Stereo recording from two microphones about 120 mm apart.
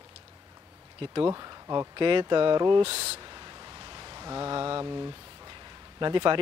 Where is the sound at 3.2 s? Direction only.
35° right (ahead or behind).